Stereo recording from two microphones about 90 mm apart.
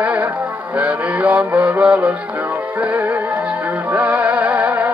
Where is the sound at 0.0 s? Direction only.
15° right (ahead or behind).